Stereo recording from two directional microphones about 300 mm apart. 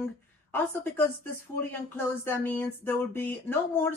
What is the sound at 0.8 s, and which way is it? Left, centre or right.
A woman's voice, centre.